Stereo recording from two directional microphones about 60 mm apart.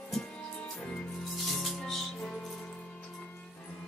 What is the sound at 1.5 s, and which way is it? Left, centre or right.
Music, centre.